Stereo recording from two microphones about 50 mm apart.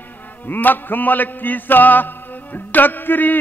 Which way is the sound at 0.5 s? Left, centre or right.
Left.